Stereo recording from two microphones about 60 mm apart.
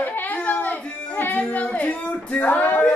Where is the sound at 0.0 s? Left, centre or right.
Left.